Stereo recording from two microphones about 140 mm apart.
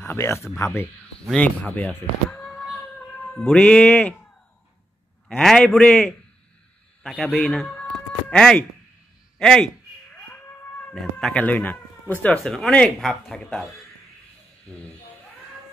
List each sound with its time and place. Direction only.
0.0 s speech: 20° left (ahead or behind)
1.2 s speech: 5° left (ahead or behind)
5.3 s speech: 5° left (ahead or behind)
10.1 s cat: 15° left (ahead or behind)
11.0 s speech: 5° left (ahead or behind)